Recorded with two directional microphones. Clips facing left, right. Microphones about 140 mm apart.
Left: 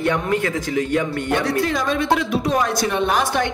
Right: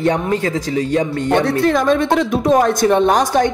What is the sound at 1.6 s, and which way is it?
A woman's voice, 50° right (ahead or behind).